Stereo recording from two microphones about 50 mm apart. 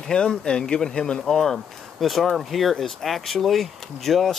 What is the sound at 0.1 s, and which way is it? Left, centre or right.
Speech, centre.